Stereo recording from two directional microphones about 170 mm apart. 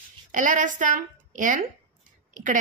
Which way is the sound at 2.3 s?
50° right (ahead or behind).